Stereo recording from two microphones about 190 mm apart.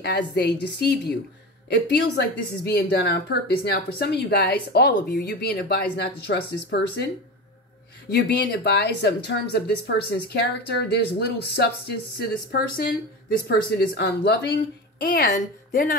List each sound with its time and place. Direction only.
0.0 s speech: 60° left (ahead or behind)
8.1 s speech: 60° left (ahead or behind); by 16.0 s 45° left (ahead or behind)